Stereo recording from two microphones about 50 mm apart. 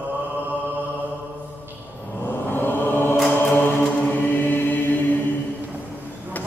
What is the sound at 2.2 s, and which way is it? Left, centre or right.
Chant, left.